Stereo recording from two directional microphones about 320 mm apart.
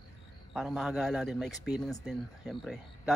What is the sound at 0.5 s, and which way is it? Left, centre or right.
Speech, centre.